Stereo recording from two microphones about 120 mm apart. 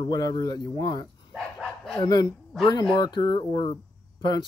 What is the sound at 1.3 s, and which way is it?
Dog, centre (ahead or behind).